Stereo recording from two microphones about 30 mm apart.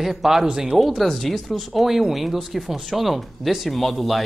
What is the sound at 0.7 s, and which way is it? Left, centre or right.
Speech, centre.